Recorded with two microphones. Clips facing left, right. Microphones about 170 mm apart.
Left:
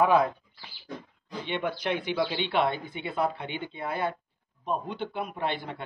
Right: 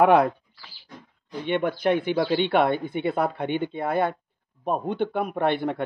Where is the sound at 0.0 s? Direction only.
70° right (ahead or behind).